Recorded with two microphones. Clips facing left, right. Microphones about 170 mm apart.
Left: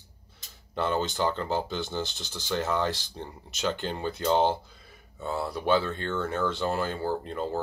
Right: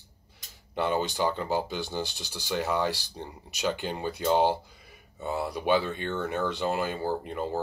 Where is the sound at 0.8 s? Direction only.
15° right (ahead or behind).